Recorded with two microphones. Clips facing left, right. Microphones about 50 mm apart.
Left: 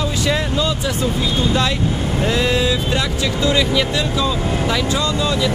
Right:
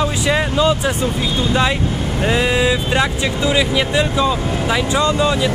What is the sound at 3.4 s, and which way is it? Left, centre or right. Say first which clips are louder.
Speech: even; centre.